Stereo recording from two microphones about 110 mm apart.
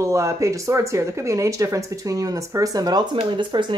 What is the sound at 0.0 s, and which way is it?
Speech, 30° right (ahead or behind).